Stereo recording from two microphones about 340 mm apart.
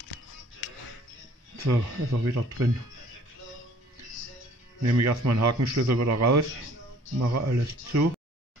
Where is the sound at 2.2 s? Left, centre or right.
Right.